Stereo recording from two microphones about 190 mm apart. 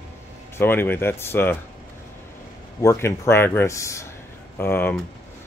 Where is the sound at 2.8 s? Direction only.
15° left (ahead or behind).